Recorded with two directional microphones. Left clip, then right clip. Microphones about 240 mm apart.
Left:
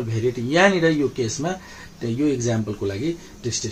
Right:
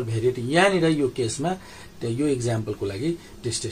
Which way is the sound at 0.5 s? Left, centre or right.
Left.